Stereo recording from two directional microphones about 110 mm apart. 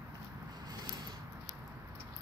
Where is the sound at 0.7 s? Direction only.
40° right (ahead or behind).